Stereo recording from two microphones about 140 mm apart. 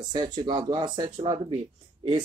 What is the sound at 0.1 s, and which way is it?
Speech, 30° right (ahead or behind).